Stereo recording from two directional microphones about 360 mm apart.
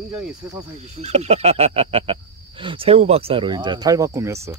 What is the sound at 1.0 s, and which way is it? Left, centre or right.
Speech, centre.